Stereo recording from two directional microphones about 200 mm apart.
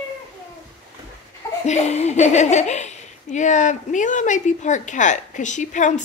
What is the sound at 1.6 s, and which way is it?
Speech, 35° left (ahead or behind).